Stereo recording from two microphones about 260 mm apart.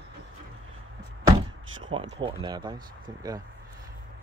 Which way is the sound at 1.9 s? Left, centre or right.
Right.